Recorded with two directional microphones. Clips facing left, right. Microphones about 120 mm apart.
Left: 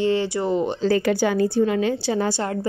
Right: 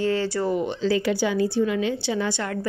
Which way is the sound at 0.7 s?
45° left (ahead or behind).